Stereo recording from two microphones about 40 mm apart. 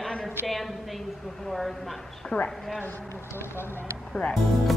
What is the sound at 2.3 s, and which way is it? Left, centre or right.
Speech, left.